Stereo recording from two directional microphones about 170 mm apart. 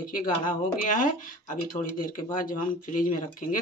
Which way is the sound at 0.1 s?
50° left (ahead or behind).